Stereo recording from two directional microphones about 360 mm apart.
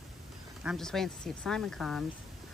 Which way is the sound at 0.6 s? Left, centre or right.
Centre.